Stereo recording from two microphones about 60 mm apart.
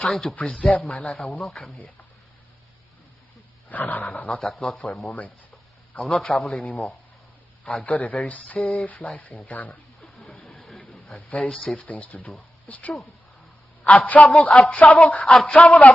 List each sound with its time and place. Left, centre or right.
0.0 s speech: left
3.6 s speech: left
10.0 s a sound: left
11.6 s speech: left